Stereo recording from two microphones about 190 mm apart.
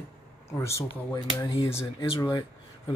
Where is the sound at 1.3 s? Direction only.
25° left (ahead or behind).